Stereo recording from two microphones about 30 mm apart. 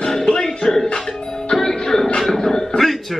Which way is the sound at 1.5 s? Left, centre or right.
Centre.